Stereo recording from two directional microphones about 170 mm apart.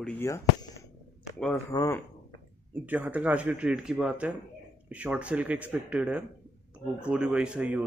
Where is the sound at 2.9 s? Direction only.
10° right (ahead or behind).